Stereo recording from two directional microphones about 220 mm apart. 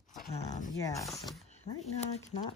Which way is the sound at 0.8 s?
15° left (ahead or behind).